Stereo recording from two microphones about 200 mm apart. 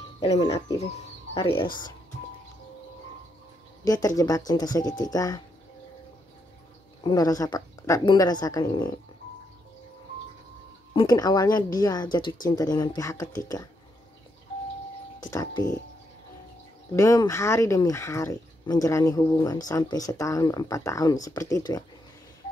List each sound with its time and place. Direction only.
0.2 s speech: 20° left (ahead or behind)
3.8 s speech: 20° left (ahead or behind)
7.0 s speech: 20° left (ahead or behind)
10.9 s speech: 20° left (ahead or behind)
15.3 s speech: 20° left (ahead or behind)
16.9 s speech: 15° left (ahead or behind)